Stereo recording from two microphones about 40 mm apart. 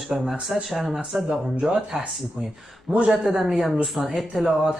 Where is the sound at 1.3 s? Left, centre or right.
Centre.